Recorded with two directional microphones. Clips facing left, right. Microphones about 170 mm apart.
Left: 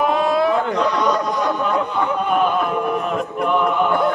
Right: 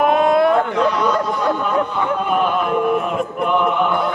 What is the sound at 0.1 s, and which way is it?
Chatter, 55° right (ahead or behind).